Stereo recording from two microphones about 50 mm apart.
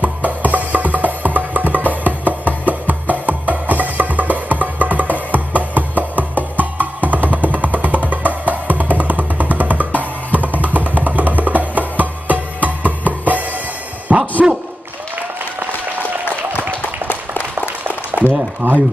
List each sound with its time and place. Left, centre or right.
0.0 s music: right
14.1 s a sound: right
18.6 s speech: right